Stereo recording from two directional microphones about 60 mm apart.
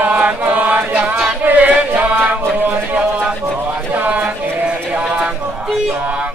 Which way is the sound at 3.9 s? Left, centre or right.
Right.